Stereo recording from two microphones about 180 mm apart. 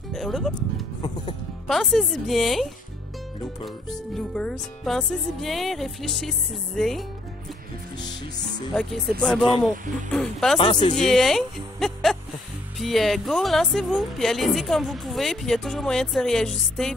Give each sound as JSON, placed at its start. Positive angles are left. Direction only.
{"t": 0.1, "sound": "music", "side_deg": 0}
{"t": 1.7, "sound": "speech", "side_deg": 0}
{"t": 8.7, "sound": "speech", "side_deg": 0}
{"t": 10.6, "sound": "speech", "side_deg": 25}
{"t": 11.0, "sound": "speech", "side_deg": 0}